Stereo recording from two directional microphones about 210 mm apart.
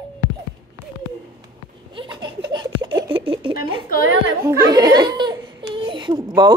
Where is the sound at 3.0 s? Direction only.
25° right (ahead or behind).